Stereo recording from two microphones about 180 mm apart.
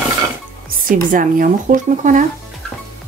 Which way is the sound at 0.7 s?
50° right (ahead or behind).